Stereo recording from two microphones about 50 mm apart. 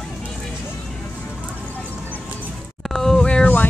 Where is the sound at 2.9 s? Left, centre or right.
Centre.